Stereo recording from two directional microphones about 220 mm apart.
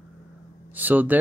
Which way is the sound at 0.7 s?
10° right (ahead or behind).